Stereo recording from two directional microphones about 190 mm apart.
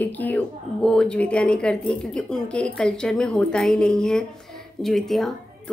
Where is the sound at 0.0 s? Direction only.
10° left (ahead or behind).